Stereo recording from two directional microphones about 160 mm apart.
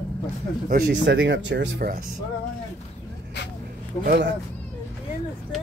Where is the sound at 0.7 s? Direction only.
80° right.